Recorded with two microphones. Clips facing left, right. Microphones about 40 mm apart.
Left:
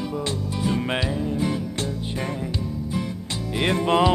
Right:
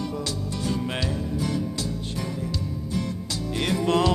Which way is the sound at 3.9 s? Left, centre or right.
Left.